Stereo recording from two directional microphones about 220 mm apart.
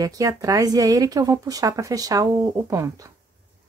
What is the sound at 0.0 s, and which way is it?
Speech, 15° right (ahead or behind).